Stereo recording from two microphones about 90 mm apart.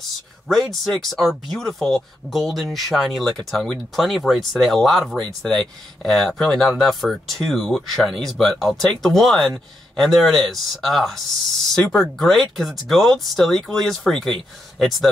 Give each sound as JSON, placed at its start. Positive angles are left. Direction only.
{"t": 0.5, "sound": "speech", "side_deg": 0}